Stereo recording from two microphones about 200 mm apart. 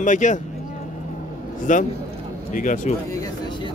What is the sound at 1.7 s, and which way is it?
A man's voice, 40° left (ahead or behind).